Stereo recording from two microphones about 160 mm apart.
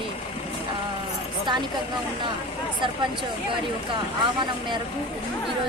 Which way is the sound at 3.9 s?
30° right (ahead or behind).